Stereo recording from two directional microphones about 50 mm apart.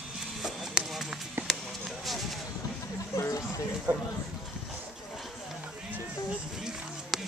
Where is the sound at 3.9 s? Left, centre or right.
Right.